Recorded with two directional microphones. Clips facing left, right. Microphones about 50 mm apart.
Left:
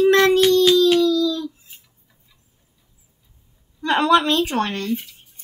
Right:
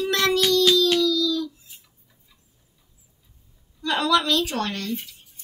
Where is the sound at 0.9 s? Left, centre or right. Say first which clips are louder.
Left 4 dB; left.